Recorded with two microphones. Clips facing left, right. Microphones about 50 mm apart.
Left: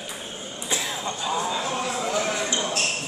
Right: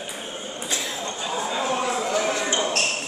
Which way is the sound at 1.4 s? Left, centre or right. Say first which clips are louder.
Right 2 dB; centre.